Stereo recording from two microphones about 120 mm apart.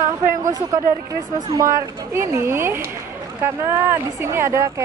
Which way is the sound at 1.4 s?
30° right (ahead or behind).